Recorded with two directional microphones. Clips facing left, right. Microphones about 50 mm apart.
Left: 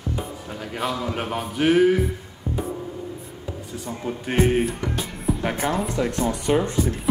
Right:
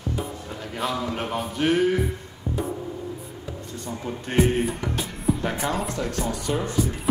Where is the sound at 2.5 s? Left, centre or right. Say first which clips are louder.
Left 1 dB; left.